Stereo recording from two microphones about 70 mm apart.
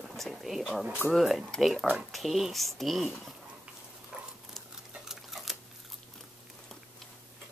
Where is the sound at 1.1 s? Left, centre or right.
Centre.